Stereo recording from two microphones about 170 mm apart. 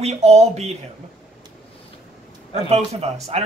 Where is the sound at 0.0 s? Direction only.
40° right (ahead or behind).